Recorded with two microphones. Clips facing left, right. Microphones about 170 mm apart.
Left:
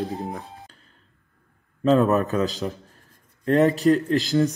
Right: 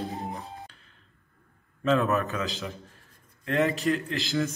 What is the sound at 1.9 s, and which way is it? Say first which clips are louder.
A man's voice: left 6 dB; 35° left (ahead or behind).